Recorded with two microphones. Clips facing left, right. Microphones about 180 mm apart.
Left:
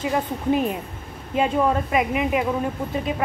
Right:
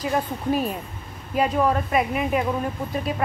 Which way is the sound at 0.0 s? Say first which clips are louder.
Left 1 dB; 20° left (ahead or behind).